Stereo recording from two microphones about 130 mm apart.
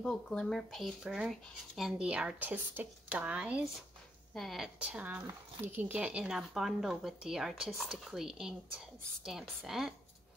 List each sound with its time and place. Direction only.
0.0 s speech: 5° left (ahead or behind)